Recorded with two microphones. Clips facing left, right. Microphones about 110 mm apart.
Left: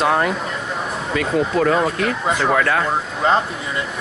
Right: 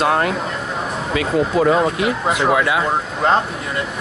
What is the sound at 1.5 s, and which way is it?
Speech, 15° right (ahead or behind).